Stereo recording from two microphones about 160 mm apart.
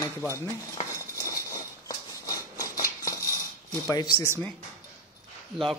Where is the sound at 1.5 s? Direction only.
20° left (ahead or behind).